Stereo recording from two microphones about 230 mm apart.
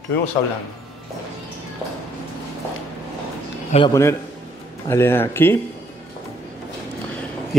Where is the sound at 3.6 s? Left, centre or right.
Left.